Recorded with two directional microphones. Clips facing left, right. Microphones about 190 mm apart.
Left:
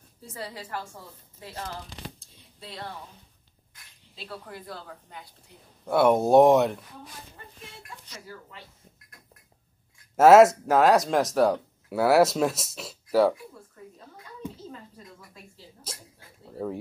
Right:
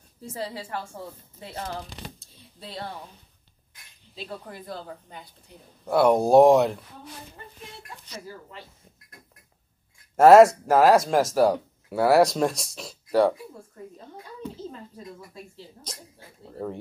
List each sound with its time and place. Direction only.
0.3 s a woman's voice: 30° right (ahead or behind)
4.1 s speech: 20° right (ahead or behind)
5.9 s speech: centre (ahead or behind)
10.1 s speech: centre (ahead or behind)
16.5 s speech: 5° left (ahead or behind)